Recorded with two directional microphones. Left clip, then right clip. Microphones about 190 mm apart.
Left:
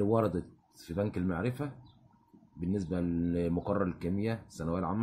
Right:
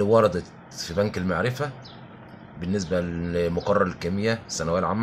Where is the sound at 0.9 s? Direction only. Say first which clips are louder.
Right 9 dB; 25° left (ahead or behind).